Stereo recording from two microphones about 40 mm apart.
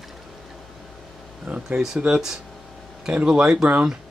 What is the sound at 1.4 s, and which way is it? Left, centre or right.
Speech, right.